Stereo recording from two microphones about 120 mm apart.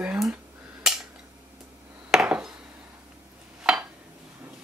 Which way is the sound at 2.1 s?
5° right (ahead or behind).